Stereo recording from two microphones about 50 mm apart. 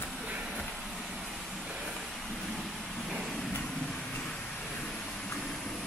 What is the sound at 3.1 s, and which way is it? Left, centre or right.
Vehicle, centre.